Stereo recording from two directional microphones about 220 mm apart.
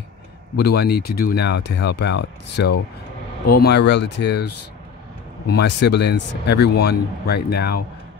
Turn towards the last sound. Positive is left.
turn(degrees=45)  # may be behind; listen again after turning